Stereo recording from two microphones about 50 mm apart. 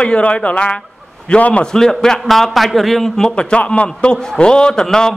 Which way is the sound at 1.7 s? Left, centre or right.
Centre.